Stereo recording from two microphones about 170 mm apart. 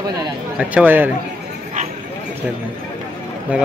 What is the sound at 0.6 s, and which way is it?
Speech, 10° right (ahead or behind).